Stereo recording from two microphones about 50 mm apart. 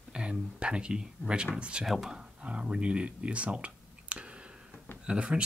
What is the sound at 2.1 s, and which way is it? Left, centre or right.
Speech, centre.